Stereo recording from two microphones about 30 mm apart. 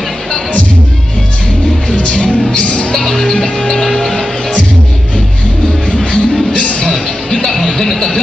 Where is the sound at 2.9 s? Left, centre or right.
Centre.